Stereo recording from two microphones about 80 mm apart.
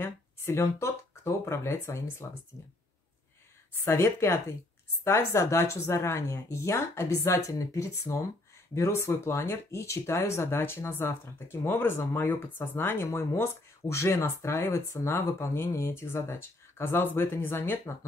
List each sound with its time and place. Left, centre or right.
0.0 s speech: left
2.5 s speech: left
3.8 s speech: left